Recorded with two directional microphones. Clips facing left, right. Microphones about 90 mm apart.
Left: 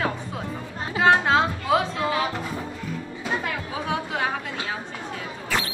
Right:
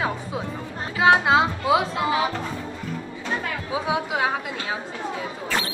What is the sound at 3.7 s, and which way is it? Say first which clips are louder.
Speech: right 6 dB; 10° right (ahead or behind).